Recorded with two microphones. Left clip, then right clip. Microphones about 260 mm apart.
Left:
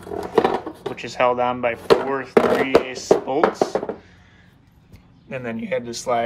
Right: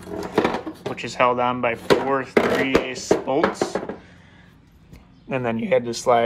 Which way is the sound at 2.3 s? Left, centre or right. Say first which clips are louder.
Left 5 dB; left.